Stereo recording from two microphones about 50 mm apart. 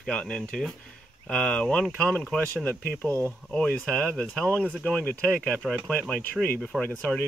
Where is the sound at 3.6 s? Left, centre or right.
Left.